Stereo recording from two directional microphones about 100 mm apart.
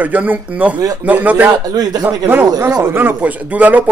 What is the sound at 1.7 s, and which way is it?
Speech, 40° right (ahead or behind).